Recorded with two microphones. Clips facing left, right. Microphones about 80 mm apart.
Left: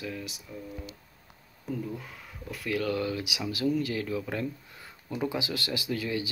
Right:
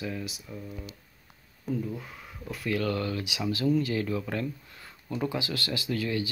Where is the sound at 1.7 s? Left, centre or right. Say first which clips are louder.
Right 2 dB; centre.